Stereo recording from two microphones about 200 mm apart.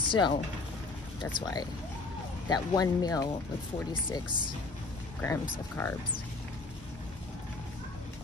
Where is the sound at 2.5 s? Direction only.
20° left (ahead or behind).